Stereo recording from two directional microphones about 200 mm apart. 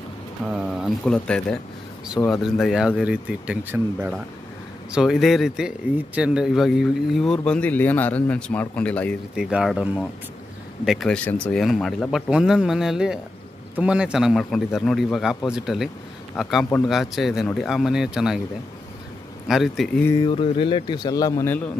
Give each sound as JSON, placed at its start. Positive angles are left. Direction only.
{"t": 0.5, "sound": "speech", "side_deg": -5}
{"t": 9.3, "sound": "speech", "side_deg": -5}
{"t": 19.4, "sound": "speech", "side_deg": 0}
{"t": 20.1, "sound": "speech", "side_deg": 20}